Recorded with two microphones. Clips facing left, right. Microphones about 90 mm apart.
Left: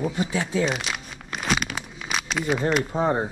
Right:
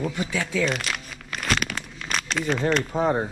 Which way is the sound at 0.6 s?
5° left (ahead or behind).